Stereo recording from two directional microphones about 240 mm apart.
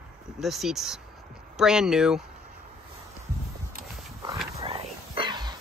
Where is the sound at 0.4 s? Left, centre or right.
Centre.